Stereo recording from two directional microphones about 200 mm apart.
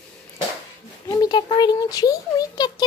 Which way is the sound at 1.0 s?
20° left (ahead or behind).